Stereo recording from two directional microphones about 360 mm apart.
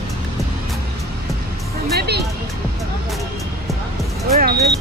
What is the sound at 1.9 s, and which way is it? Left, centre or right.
Music, right.